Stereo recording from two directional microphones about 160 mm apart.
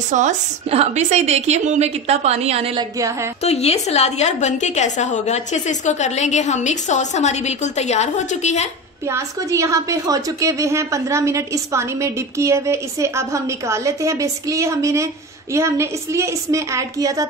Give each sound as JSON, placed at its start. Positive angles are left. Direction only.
{"t": 0.1, "sound": "a woman's voice", "side_deg": -45}
{"t": 3.0, "sound": "a woman's voice", "side_deg": -20}
{"t": 3.4, "sound": "a woman's voice", "side_deg": 40}
{"t": 9.0, "sound": "a woman's voice", "side_deg": -20}